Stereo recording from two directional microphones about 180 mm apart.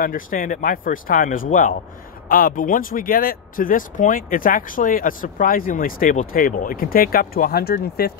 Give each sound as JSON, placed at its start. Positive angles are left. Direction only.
{"t": 0.0, "sound": "speech", "side_deg": 50}